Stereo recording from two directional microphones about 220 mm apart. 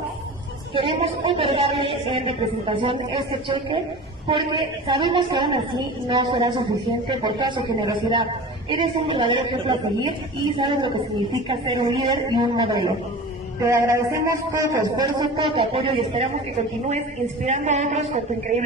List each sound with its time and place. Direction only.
0.7 s a woman's voice: 25° right (ahead or behind)
17.5 s speech: 30° right (ahead or behind)